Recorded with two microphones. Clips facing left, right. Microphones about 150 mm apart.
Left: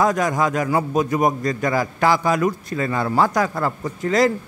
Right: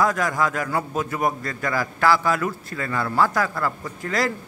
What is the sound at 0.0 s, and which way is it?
A man's voice, 20° left (ahead or behind).